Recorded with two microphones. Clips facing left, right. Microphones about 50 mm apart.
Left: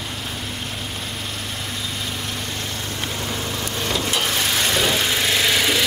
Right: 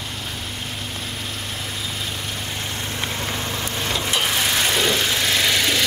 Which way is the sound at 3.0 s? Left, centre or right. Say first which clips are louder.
Right 1 dB; right.